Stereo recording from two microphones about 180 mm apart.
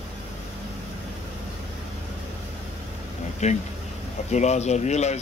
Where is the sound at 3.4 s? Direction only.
40° left (ahead or behind).